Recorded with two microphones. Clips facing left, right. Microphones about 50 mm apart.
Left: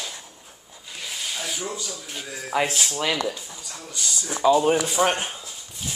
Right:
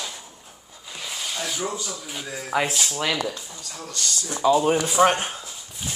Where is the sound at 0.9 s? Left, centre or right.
Centre.